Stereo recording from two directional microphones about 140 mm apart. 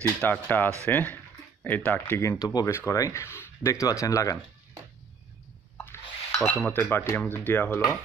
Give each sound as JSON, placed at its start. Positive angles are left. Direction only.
{"t": 0.2, "sound": "speech", "side_deg": 15}
{"t": 6.3, "sound": "speech", "side_deg": 10}